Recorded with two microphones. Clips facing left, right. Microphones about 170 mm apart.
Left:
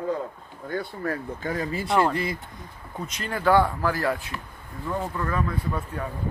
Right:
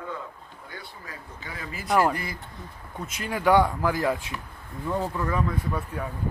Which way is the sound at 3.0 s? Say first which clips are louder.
Even; 10° right (ahead or behind).